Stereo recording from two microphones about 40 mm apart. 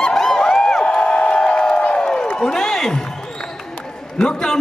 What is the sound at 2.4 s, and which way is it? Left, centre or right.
Speech, centre.